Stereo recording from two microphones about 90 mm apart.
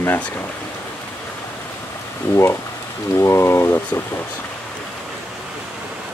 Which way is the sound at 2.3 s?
30° left (ahead or behind).